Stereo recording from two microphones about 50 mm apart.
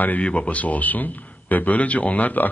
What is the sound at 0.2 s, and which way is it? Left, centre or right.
A man's voice, left.